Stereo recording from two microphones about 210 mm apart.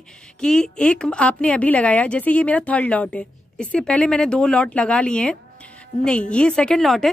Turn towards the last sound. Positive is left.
turn(degrees=0)  # may be behind; listen again after turning